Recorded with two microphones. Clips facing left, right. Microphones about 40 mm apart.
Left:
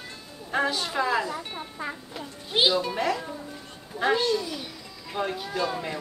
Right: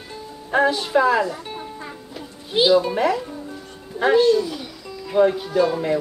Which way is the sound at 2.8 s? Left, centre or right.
Centre.